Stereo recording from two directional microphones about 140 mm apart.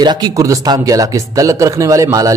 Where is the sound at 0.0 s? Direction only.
30° right (ahead or behind).